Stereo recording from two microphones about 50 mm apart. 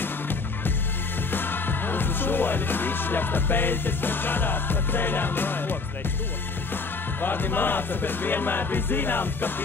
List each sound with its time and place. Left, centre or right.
0.0 s music: left
6.7 s speech: left